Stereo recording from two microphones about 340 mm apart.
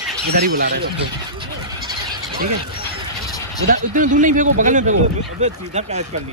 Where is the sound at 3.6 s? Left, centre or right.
Right.